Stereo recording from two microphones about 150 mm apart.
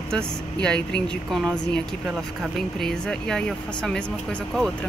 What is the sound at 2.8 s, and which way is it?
Speech, 5° left (ahead or behind).